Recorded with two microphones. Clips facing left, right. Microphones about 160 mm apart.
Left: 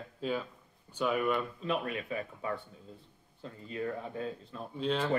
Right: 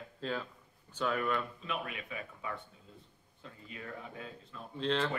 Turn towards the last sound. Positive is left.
turn(degrees=10)  # may be behind; listen again after turning